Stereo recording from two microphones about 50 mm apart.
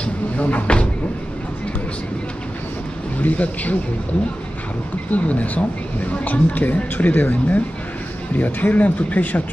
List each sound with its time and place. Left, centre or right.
0.0 s vehicle: left
3.2 s speech: left
5.1 s speech: left